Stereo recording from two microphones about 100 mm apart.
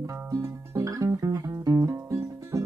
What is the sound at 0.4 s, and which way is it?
Music, 30° right (ahead or behind).